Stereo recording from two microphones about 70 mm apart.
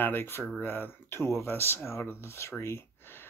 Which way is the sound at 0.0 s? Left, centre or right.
Left.